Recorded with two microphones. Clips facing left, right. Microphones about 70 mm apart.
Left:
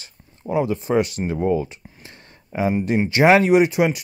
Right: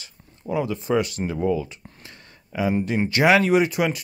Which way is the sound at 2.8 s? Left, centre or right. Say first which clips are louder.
Left 5 dB; left.